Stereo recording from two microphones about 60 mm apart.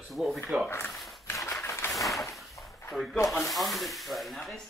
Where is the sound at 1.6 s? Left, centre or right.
Left.